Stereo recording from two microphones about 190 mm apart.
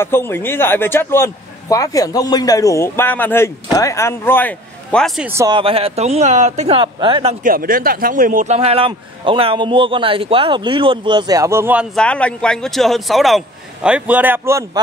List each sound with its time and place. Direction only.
0.0 s a man's voice: 10° left (ahead or behind)
5.3 s a man's voice: 15° right (ahead or behind)
5.6 s speech: 30° right (ahead or behind)
7.4 s a man's voice: 50° right (ahead or behind); by 12.0 s 5° right (ahead or behind)
12.0 s a man's voice: 5° left (ahead or behind); by 14.8 s 15° right (ahead or behind)